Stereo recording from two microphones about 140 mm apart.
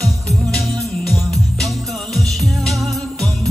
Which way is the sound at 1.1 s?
Centre (ahead or behind).